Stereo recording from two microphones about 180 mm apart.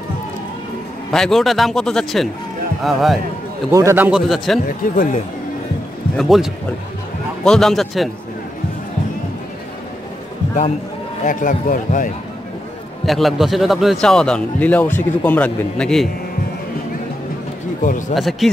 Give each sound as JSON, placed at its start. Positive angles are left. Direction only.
{"t": 1.1, "sound": "a man's voice", "side_deg": 0}
{"t": 3.7, "sound": "a man's voice", "side_deg": -15}
{"t": 4.6, "sound": "a man's voice", "side_deg": 45}
{"t": 6.1, "sound": "a man's voice", "side_deg": 0}
{"t": 11.2, "sound": "a man's voice", "side_deg": 50}
{"t": 13.0, "sound": "a man's voice", "side_deg": 0}
{"t": 17.8, "sound": "a man's voice", "side_deg": 45}
{"t": 18.1, "sound": "a man's voice", "side_deg": 0}